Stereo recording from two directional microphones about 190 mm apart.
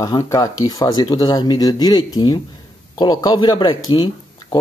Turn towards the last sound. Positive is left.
turn(degrees=25)  # may be behind; listen again after turning